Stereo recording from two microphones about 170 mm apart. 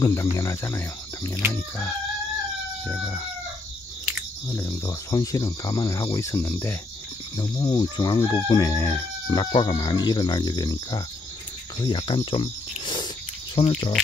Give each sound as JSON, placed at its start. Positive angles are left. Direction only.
{"t": 0.0, "sound": "chicken", "side_deg": 20}
{"t": 4.5, "sound": "chicken", "side_deg": 15}
{"t": 7.3, "sound": "chicken", "side_deg": 25}
{"t": 11.8, "sound": "speech", "side_deg": 30}
{"t": 13.6, "sound": "chicken", "side_deg": 30}